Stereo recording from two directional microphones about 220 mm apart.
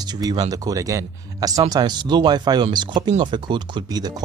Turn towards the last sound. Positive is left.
turn(degrees=-20)  # may be behind; listen again after turning